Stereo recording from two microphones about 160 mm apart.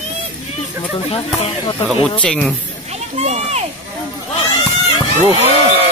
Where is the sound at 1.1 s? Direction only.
35° left (ahead or behind).